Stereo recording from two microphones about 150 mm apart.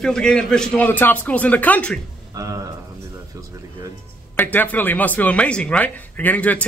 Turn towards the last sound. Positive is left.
turn(degrees=10)  # may be behind; listen again after turning